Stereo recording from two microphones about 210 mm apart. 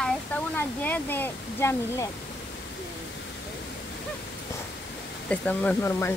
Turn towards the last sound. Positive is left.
turn(degrees=10)  # may be behind; listen again after turning